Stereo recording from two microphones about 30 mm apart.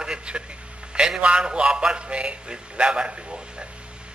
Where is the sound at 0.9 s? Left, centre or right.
Right.